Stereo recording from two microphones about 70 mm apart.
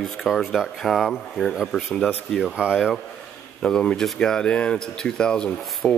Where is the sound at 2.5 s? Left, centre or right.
Centre.